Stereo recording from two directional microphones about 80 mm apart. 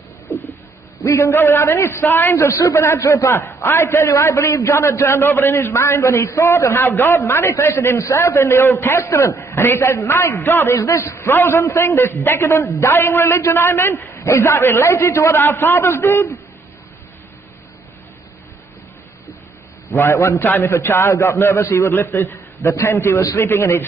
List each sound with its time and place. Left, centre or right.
0.3 s a sound: left
1.0 s a man's voice: left
20.0 s a man's voice: left